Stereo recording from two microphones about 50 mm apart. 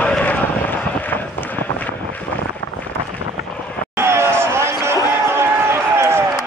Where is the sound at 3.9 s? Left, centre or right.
Right.